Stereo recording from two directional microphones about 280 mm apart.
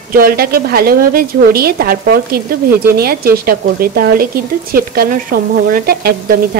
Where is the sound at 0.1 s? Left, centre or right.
Right.